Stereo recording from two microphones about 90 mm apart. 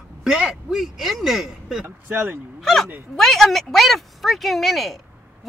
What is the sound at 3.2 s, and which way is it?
Speech, centre (ahead or behind).